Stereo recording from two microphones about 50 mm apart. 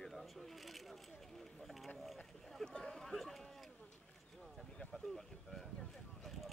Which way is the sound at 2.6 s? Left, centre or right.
Centre.